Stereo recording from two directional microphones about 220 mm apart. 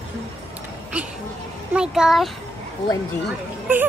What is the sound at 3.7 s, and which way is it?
Speech, 10° right (ahead or behind).